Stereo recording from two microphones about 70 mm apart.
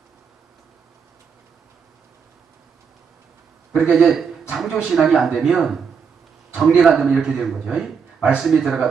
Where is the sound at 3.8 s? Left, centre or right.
Centre.